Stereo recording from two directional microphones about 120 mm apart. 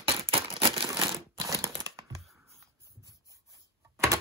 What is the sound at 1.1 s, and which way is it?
Crumpling, 25° right (ahead or behind).